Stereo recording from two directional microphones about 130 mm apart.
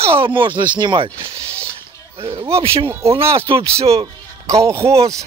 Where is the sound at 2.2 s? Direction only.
45° right (ahead or behind).